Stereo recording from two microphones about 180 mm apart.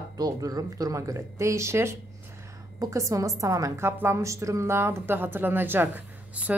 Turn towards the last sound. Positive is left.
turn(degrees=-10)  # may be behind; listen again after turning